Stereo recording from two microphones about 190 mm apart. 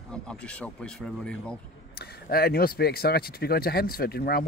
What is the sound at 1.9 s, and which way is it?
Speech, 55° left (ahead or behind).